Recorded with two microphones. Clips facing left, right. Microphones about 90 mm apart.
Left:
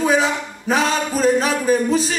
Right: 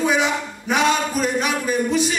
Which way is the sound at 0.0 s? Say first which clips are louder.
Left 2 dB; 35° left (ahead or behind).